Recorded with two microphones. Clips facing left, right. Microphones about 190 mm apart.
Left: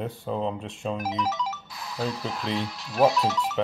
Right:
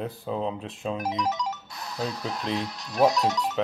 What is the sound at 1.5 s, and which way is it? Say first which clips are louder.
Music: even; 40° right (ahead or behind).